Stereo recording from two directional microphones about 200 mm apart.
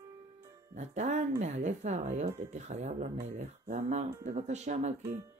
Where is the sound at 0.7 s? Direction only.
35° right (ahead or behind).